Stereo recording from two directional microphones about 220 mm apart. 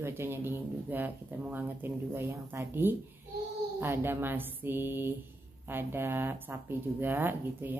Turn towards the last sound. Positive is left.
turn(degrees=-10)  # may be behind; listen again after turning